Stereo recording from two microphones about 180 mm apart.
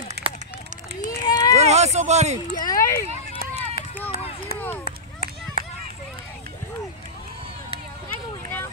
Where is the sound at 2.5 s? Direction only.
20° left (ahead or behind).